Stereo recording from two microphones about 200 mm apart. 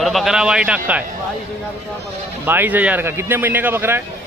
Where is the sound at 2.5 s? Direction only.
10° right (ahead or behind).